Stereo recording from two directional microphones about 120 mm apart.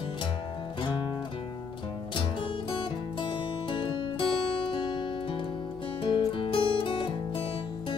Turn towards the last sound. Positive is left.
turn(degrees=45)  # may be behind; listen again after turning